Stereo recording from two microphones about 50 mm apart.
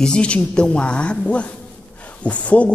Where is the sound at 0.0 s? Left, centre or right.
Left.